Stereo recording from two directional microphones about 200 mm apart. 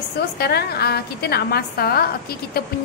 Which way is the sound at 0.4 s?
55° left (ahead or behind).